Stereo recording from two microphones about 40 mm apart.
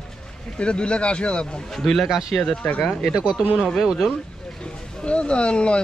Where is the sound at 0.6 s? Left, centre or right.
Left.